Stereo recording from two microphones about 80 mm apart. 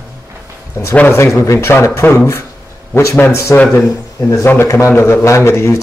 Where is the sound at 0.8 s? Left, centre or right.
Left.